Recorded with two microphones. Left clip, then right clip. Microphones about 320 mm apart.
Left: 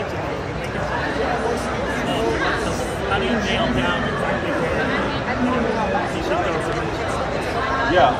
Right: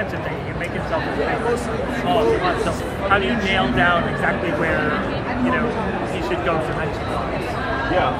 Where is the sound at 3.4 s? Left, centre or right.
Right.